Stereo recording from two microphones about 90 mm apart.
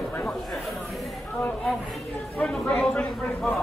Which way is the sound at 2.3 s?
15° left (ahead or behind).